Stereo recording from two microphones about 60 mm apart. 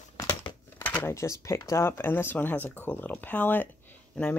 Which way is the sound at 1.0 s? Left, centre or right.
Left.